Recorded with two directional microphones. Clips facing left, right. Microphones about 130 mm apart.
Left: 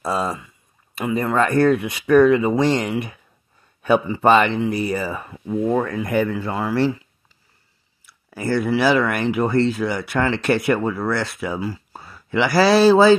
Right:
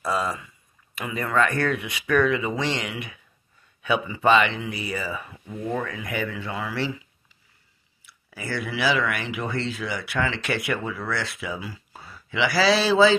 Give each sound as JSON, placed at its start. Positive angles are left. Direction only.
{"t": 0.0, "sound": "speech", "side_deg": 30}
{"t": 8.0, "sound": "speech", "side_deg": 45}